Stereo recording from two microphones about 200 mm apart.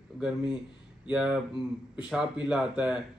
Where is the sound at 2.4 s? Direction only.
5° right (ahead or behind).